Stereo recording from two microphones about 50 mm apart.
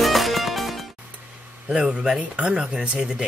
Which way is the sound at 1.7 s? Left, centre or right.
Right.